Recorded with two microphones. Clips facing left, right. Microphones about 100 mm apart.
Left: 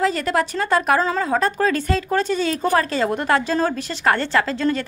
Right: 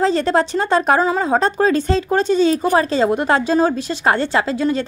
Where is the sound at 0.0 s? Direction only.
30° right (ahead or behind).